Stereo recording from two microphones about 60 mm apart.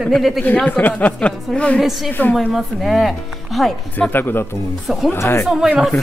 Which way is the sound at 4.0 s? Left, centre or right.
Left.